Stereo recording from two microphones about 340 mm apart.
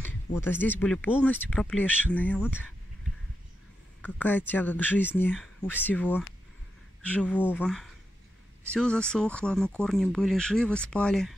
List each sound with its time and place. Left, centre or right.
0.0 s speech: centre
4.0 s speech: centre